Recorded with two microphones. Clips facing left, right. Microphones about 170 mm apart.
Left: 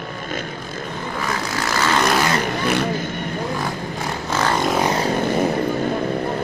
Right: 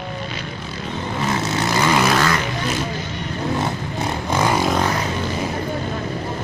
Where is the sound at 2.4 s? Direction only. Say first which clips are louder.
Left 3 dB; 60° left (ahead or behind).